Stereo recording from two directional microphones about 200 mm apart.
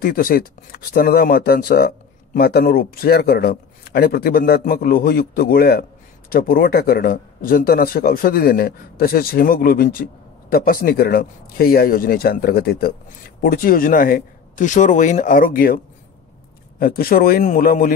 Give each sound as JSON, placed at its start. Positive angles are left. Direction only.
{"t": 0.0, "sound": "speech", "side_deg": 45}
{"t": 16.8, "sound": "speech", "side_deg": 45}